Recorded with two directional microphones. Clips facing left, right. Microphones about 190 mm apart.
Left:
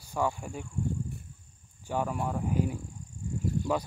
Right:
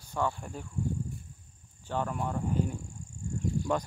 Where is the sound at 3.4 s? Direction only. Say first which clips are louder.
Left 1 dB; 5° left (ahead or behind).